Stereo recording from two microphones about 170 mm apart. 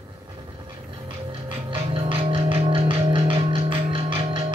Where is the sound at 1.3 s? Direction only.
30° right (ahead or behind).